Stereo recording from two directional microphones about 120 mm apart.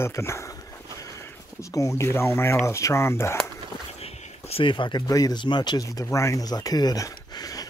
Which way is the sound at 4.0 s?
55° left (ahead or behind).